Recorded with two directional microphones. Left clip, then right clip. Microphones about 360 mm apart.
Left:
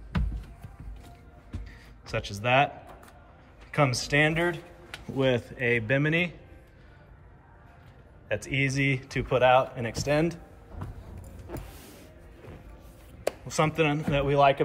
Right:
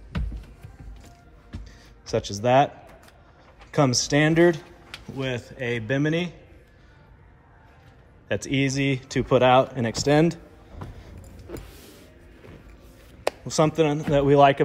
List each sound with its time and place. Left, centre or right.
2.0 s a man's voice: centre
3.7 s a man's voice: centre
4.9 s a man's voice: centre
8.3 s a man's voice: centre
10.8 s music: centre
11.4 s power windows: centre
13.5 s a man's voice: centre